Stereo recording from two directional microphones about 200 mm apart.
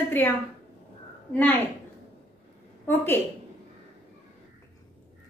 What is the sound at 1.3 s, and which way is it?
Speech, 10° left (ahead or behind).